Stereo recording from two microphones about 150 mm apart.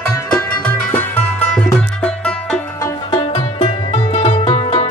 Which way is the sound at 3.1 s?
40° left (ahead or behind).